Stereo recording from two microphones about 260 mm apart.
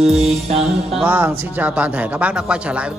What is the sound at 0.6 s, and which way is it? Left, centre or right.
Speech, centre.